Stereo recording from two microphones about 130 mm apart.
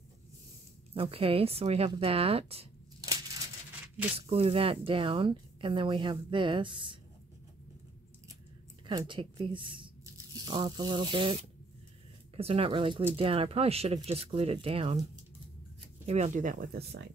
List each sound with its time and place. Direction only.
0.9 s speech: 45° right (ahead or behind)
4.3 s speech: 45° right (ahead or behind)
8.8 s speech: 40° right (ahead or behind)
12.4 s speech: 45° right (ahead or behind)
16.1 s speech: 70° right (ahead or behind); by 16.6 s 85° right